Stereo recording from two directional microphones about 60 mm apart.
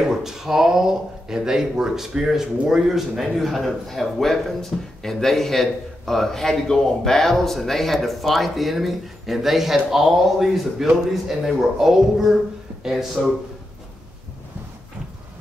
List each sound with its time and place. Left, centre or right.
0.0 s a man's voice: centre